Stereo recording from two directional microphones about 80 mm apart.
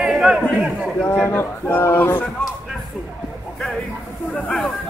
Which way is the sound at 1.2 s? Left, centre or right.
Left.